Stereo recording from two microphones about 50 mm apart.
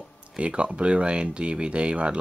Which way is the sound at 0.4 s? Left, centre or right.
Right.